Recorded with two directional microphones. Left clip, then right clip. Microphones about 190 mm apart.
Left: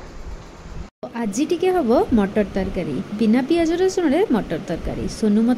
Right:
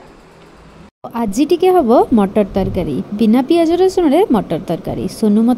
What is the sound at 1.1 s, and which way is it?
A woman's voice, 25° right (ahead or behind).